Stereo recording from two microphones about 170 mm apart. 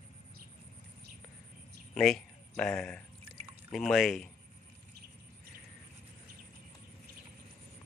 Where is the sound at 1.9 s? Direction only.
5° left (ahead or behind).